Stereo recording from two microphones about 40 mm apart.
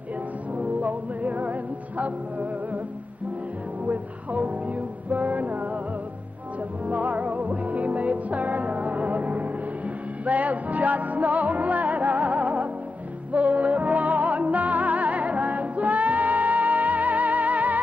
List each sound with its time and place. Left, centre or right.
0.6 s music: right
3.8 s music: right
6.9 s music: right